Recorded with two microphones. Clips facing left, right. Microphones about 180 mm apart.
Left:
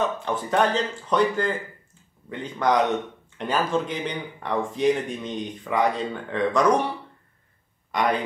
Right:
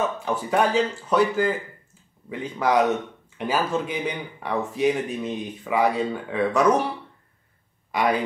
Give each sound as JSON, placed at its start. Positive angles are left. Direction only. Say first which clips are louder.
{"t": 0.0, "sound": "speech", "louder": "even", "side_deg": -10}
{"t": 7.9, "sound": "speech", "louder": "right 1 dB", "side_deg": -5}